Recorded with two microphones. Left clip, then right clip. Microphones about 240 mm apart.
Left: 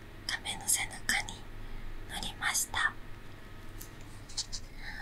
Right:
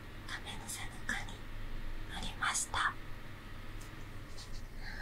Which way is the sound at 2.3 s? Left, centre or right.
Centre.